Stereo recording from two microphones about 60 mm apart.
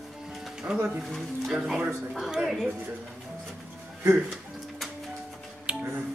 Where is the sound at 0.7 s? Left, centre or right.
Centre.